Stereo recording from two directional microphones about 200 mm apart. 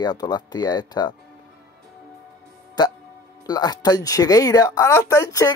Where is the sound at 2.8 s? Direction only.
20° left (ahead or behind).